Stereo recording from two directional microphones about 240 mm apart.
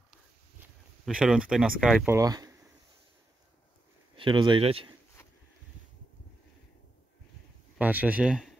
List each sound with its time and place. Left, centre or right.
1.0 s speech: centre
2.1 s speech: centre
4.2 s speech: centre
7.7 s speech: centre